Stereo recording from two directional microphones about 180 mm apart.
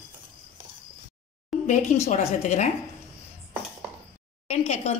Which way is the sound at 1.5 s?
Centre (ahead or behind).